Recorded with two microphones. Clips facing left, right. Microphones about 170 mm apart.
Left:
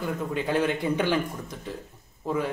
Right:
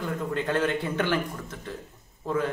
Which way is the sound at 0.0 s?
10° left (ahead or behind).